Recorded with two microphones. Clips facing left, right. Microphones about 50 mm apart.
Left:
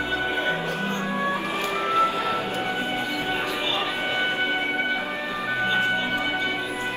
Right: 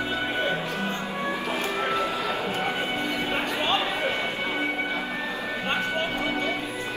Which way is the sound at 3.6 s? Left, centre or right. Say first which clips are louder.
Right 1 dB; right.